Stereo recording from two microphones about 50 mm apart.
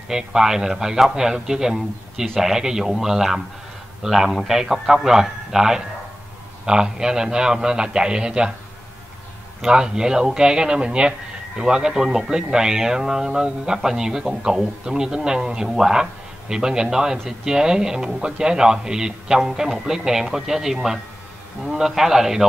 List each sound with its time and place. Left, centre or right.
0.1 s speech: centre
9.6 s speech: centre